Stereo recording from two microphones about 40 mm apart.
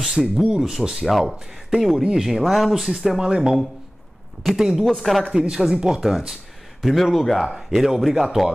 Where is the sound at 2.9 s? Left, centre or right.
Centre.